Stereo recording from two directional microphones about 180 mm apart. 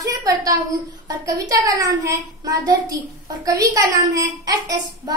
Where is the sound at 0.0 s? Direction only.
20° right (ahead or behind).